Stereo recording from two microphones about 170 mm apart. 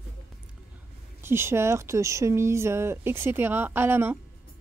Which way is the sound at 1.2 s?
15° right (ahead or behind).